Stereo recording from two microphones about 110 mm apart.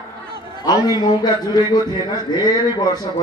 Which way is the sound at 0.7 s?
40° left (ahead or behind).